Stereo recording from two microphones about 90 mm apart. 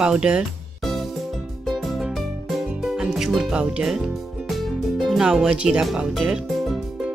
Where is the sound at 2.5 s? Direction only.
Centre (ahead or behind).